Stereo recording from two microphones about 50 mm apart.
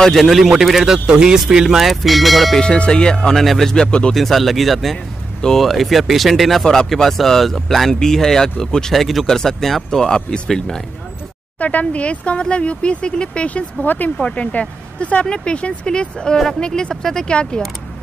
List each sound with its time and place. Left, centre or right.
0.0 s speech: centre
0.9 s speech: centre
2.6 s speech: centre
3.2 s speech: centre
4.1 s speech: centre
6.6 s speech: centre
6.9 s speech: centre
11.6 s speech: left
13.8 s speech: left; by 17.4 s centre